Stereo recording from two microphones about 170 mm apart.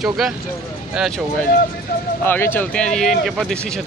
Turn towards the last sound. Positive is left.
turn(degrees=5)  # may be behind; listen again after turning